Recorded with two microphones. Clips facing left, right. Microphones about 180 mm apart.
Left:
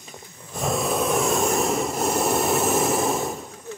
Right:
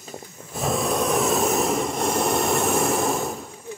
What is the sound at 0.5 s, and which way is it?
Vehicle, centre (ahead or behind).